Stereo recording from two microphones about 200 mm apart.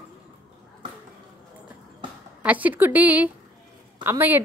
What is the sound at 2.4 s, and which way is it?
A woman's voice, 10° right (ahead or behind).